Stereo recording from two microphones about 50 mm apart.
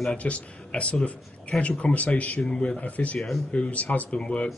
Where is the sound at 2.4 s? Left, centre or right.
Centre.